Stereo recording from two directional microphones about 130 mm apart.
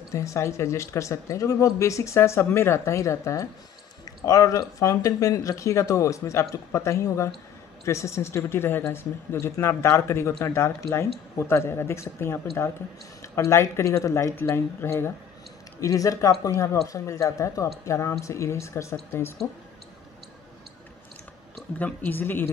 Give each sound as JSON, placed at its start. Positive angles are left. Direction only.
{"t": 0.1, "sound": "a woman's voice", "side_deg": 25}
{"t": 21.7, "sound": "a woman's voice", "side_deg": 15}